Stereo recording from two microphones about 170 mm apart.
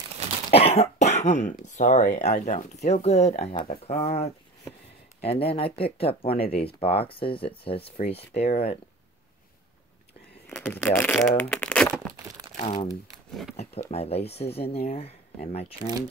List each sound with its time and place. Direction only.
0.5 s speech: 35° left (ahead or behind)
10.4 s speech: 5° left (ahead or behind)
11.4 s a sound: 10° left (ahead or behind)
12.5 s speech: 35° left (ahead or behind)
13.3 s speech: centre (ahead or behind)
13.6 s speech: 40° left (ahead or behind)